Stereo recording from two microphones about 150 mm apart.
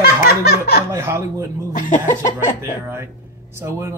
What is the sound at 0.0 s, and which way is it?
Laughter, 90° left.